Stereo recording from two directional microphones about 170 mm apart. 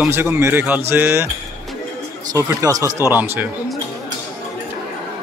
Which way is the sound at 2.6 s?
20° right (ahead or behind).